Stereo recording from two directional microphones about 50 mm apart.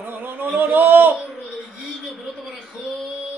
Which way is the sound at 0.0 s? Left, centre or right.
Right.